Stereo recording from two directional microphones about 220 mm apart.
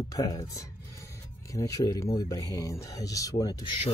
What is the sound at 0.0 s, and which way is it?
A man's voice, 15° left (ahead or behind).